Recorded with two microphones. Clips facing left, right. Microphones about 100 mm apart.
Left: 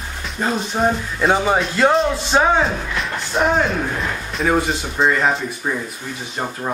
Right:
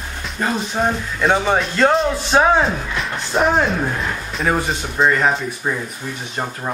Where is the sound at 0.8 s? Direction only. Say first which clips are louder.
Left 1 dB; 15° left (ahead or behind).